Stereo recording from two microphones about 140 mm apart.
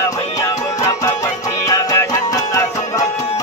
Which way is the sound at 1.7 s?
25° left (ahead or behind).